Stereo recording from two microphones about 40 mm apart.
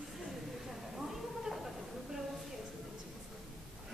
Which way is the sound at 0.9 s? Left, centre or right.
Centre.